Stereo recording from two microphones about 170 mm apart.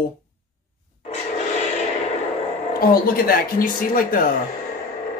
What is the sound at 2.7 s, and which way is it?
Speech, 60° left (ahead or behind).